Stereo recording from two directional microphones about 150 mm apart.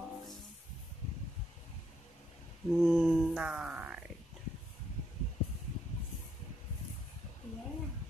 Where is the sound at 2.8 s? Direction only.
5° right (ahead or behind).